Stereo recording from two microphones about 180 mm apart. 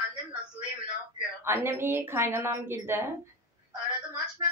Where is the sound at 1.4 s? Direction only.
15° right (ahead or behind).